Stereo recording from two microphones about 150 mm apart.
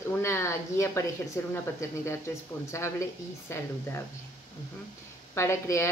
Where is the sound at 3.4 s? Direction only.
15° left (ahead or behind).